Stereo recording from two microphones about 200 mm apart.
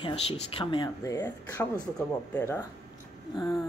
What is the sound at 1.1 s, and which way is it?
Speech, 10° left (ahead or behind).